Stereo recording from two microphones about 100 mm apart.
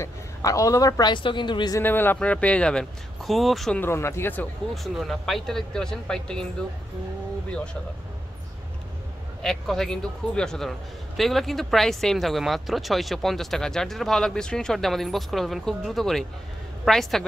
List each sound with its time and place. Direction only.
0.0 s a woman's voice: 35° left (ahead or behind)
1.1 s a woman's voice: 50° left (ahead or behind)
1.8 s a man's voice: 20° left (ahead or behind); by 3.7 s centre (ahead or behind)
3.8 s speech: 25° left (ahead or behind)
4.8 s speech: centre (ahead or behind)
9.4 s speech: 5° left (ahead or behind)